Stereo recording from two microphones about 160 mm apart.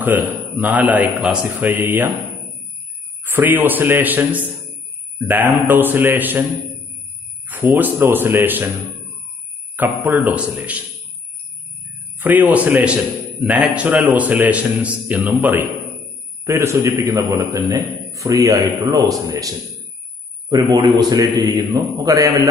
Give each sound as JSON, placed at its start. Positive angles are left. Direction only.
{"t": 0.0, "sound": "a man's voice", "side_deg": -10}
{"t": 3.3, "sound": "a man's voice", "side_deg": -10}
{"t": 7.6, "sound": "a man's voice", "side_deg": -15}
{"t": 9.8, "sound": "a man's voice", "side_deg": -10}
{"t": 12.2, "sound": "a man's voice", "side_deg": -10}